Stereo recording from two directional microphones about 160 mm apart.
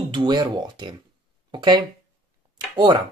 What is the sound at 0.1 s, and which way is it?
Speech, 25° right (ahead or behind).